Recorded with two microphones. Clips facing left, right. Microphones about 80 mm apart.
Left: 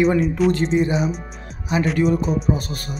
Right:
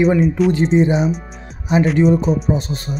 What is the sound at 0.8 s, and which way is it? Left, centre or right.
Speech, right.